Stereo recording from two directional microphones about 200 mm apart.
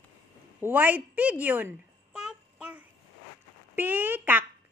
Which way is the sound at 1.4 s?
10° right (ahead or behind).